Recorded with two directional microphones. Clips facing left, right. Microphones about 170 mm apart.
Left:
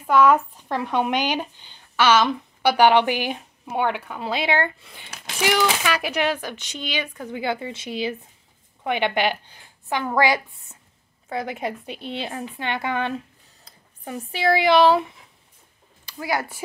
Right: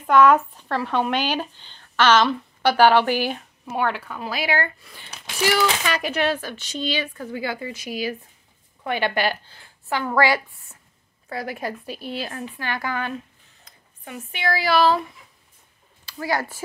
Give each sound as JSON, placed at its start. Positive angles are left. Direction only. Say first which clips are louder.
{"t": 0.0, "sound": "a woman's voice", "louder": "right 1 dB", "side_deg": 10}
{"t": 13.7, "sound": "speech", "louder": "left 4 dB", "side_deg": 35}